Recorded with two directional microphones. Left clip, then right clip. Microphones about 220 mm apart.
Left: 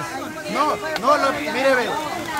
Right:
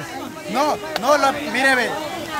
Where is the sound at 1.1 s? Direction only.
50° right (ahead or behind).